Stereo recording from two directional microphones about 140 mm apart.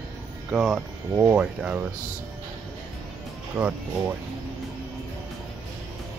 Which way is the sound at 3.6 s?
10° right (ahead or behind).